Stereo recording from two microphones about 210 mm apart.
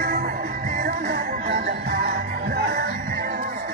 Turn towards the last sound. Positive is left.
turn(degrees=-45)  # may be behind; listen again after turning